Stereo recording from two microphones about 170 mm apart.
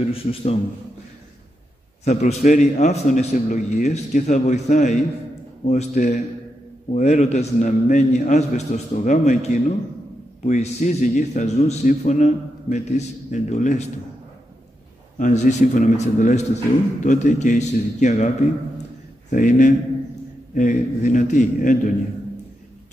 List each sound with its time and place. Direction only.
0.0 s a man's voice: 35° left (ahead or behind)
2.0 s a man's voice: 45° left (ahead or behind)
15.1 s a man's voice: 50° left (ahead or behind)
19.3 s a man's voice: 50° left (ahead or behind)